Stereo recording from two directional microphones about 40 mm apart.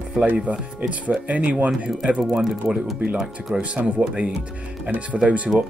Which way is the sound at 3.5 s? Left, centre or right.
Right.